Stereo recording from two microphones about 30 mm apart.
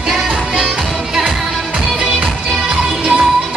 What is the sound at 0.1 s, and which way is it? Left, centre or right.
Music, centre.